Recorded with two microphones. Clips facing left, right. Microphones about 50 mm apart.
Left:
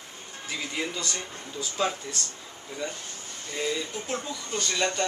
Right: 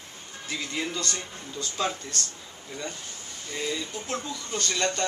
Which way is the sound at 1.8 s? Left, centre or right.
Centre.